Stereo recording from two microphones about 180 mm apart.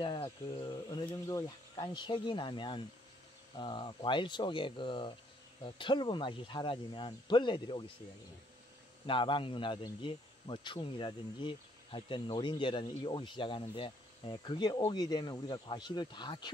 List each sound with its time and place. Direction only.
0.0 s cricket: 25° left (ahead or behind)
1.2 s speech: 20° left (ahead or behind)
9.0 s speech: 25° left (ahead or behind)